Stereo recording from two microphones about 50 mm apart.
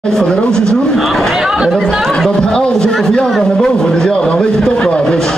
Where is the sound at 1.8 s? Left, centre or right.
Centre.